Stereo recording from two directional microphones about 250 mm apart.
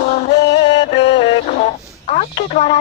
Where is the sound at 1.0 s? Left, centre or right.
Left.